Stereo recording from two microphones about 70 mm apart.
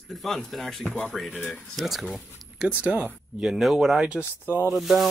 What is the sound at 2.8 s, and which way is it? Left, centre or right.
Speech, right.